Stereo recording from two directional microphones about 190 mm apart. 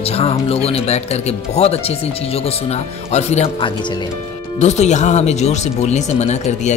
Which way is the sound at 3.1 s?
35° left (ahead or behind).